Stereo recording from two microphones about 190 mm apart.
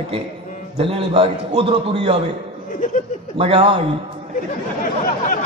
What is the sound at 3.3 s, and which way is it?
Speech, 30° right (ahead or behind).